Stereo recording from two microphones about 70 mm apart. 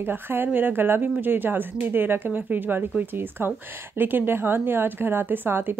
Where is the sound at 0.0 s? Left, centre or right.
Right.